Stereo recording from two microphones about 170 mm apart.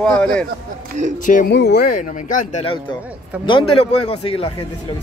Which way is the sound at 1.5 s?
75° left (ahead or behind).